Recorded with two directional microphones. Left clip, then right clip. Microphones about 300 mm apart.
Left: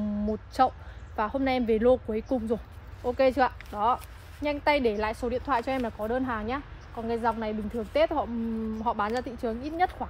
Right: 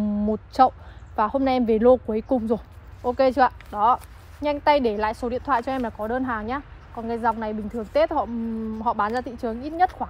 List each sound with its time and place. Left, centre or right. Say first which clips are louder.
0.3 s a woman's voice: right 6 dB; centre